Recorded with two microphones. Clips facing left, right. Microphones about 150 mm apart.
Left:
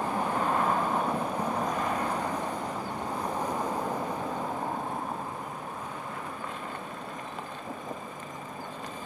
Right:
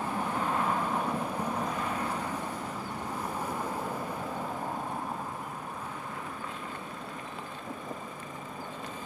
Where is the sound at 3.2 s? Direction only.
15° left (ahead or behind).